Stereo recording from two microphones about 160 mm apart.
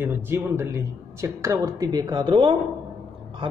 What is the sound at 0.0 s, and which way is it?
A woman's voice, 15° right (ahead or behind).